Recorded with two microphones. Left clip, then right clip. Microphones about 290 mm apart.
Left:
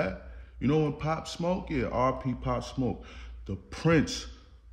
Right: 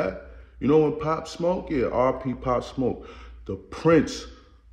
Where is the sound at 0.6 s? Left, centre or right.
Centre.